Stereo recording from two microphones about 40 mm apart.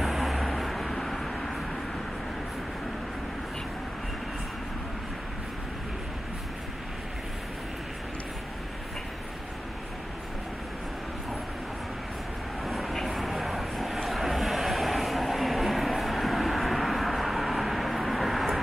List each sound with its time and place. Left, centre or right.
0.0 s vehicle: centre
12.6 s vehicle: centre